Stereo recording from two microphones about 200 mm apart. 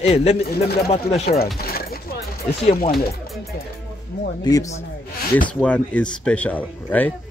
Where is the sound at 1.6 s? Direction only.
50° left (ahead or behind).